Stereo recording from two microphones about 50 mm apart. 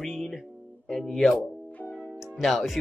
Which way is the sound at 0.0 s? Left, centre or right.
Centre.